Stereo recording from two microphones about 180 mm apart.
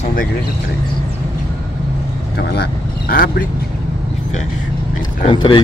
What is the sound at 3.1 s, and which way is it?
Speech, 55° left (ahead or behind).